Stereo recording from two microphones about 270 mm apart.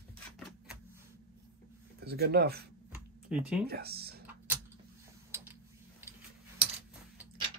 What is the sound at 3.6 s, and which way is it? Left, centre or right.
Speech, right.